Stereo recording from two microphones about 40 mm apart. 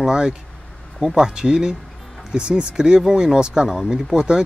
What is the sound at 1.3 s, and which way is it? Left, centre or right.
Speech, centre.